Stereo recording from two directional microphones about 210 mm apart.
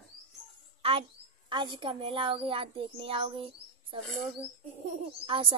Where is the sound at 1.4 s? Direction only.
25° right (ahead or behind).